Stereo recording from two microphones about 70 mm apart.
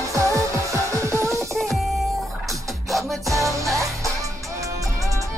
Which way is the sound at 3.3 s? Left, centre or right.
Right.